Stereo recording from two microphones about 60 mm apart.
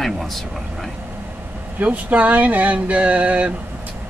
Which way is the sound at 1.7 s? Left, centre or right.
Right.